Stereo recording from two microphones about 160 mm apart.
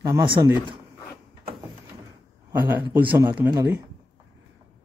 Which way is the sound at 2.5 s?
15° right (ahead or behind).